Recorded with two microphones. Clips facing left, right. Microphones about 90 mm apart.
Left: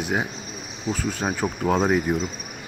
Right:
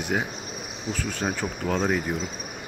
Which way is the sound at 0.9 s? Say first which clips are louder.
Left 3 dB; 10° left (ahead or behind).